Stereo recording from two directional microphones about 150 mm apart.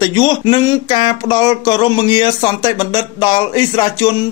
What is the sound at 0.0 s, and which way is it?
Speech, 30° left (ahead or behind).